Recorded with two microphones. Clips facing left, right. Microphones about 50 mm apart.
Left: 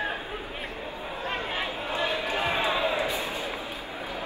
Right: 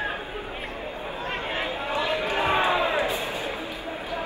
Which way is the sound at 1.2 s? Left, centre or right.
Right.